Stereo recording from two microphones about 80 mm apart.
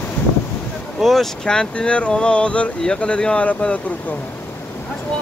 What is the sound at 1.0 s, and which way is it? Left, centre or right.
Speech, centre.